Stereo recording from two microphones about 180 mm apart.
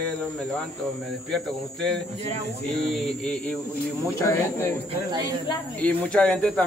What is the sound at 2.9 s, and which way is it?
Speech, centre (ahead or behind).